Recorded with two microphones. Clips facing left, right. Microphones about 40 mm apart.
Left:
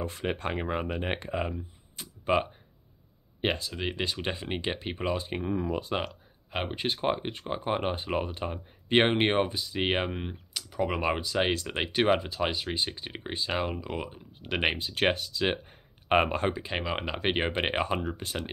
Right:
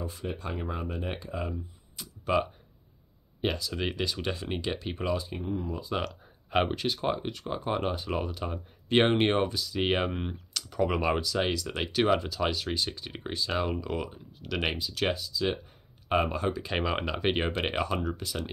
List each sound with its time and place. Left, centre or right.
0.0 s speech: left
2.0 s music: left
3.3 s speech: left
5.4 s speech: left
6.7 s speech: left
10.1 s speech: centre
11.0 s speech: left
13.7 s speech: centre; by 15.1 s left
15.1 s speech: left
16.7 s speech: centre
17.0 s speech: left